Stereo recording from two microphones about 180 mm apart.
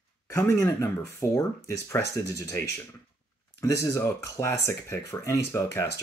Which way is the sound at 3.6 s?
15° left (ahead or behind).